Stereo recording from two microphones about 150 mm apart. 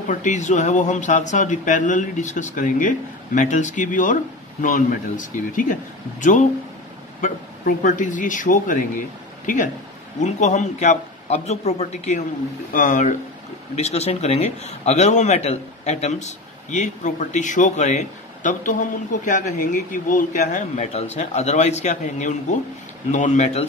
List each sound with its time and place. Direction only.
0.1 s speech: 55° left (ahead or behind)
10.2 s a man's voice: 50° left (ahead or behind)
13.7 s a man's voice: 45° left (ahead or behind)